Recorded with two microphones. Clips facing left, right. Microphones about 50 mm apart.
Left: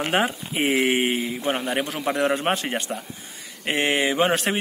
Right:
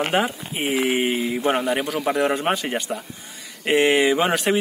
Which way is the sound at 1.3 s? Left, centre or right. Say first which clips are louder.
Right 4 dB; centre.